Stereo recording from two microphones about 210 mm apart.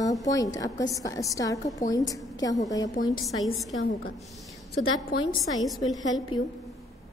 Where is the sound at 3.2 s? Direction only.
Centre (ahead or behind).